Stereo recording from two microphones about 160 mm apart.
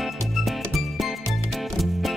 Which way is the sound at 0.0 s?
Centre (ahead or behind).